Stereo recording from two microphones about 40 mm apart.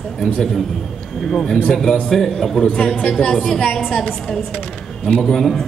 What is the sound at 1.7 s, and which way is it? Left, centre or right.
A man's voice, centre.